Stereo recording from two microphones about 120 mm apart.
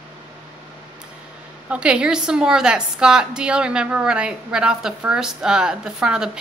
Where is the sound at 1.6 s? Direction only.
10° right (ahead or behind).